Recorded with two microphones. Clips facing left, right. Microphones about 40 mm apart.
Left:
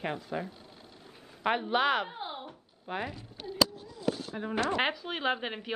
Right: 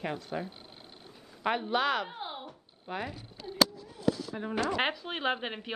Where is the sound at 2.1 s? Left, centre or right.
Centre.